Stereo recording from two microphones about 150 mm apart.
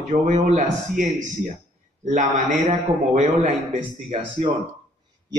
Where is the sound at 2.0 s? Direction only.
55° right (ahead or behind).